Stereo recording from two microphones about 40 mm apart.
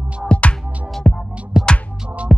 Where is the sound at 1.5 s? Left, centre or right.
Centre.